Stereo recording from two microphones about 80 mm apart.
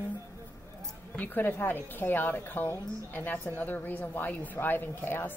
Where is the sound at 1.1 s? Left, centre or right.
Left.